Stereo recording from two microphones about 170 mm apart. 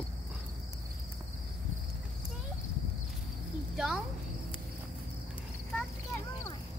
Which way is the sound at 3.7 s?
Centre (ahead or behind).